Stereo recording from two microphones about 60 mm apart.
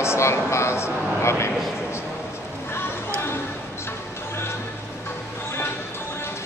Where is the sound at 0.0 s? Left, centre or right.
Left.